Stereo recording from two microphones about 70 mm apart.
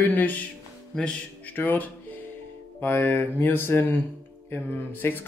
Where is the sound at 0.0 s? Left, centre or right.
Left.